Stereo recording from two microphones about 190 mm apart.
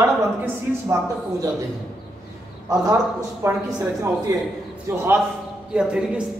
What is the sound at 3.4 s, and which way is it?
Speech, 15° right (ahead or behind).